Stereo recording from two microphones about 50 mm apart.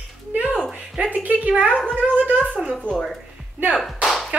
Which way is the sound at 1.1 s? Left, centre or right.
Right.